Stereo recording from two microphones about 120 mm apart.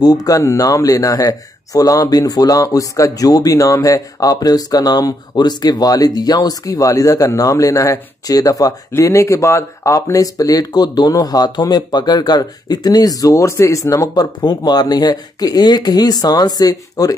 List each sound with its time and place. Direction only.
0.0 s speech: 30° left (ahead or behind)